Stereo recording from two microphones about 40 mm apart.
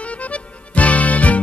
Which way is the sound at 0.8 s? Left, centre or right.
Left.